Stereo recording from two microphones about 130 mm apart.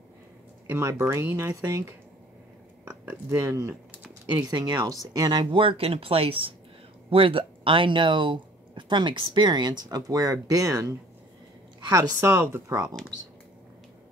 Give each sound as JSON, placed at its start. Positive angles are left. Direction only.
{"t": 0.7, "sound": "speech", "side_deg": -20}